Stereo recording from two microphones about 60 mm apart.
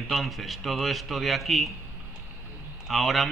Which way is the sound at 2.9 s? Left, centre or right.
Centre.